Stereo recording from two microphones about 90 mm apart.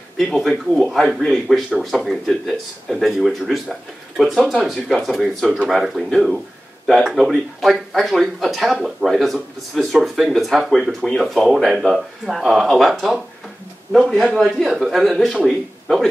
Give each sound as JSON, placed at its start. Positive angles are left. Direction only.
{"t": 0.2, "sound": "speech", "side_deg": 5}